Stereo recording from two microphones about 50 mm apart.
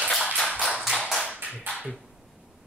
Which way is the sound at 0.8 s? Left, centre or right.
Centre.